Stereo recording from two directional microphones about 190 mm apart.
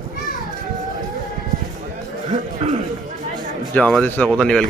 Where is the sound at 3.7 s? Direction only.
5° left (ahead or behind).